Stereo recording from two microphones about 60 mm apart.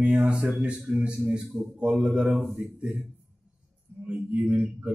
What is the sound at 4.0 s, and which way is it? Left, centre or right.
Speech, right.